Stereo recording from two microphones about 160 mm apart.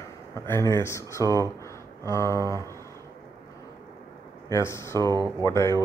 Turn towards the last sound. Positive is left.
turn(degrees=20)  # may be behind; listen again after turning